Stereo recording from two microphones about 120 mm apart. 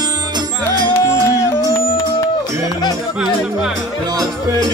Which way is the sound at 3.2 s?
5° right (ahead or behind).